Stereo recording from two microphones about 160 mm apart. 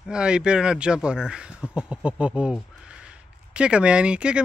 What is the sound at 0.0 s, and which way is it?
Speech, 5° right (ahead or behind).